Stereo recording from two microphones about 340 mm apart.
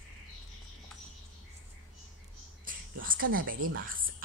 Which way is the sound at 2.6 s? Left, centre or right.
Right.